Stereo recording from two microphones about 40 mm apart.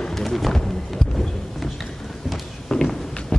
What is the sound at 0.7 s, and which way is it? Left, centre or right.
Music, centre.